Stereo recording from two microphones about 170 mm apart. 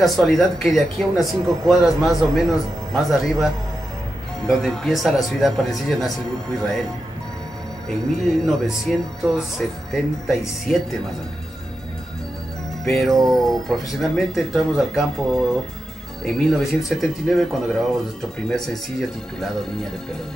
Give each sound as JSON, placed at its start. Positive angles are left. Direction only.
{"t": 0.0, "sound": "speech", "side_deg": 0}
{"t": 4.5, "sound": "speech", "side_deg": 0}
{"t": 7.9, "sound": "speech", "side_deg": 0}
{"t": 12.8, "sound": "speech", "side_deg": 0}